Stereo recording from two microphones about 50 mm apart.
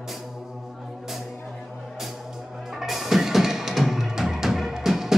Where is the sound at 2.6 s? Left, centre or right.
Centre.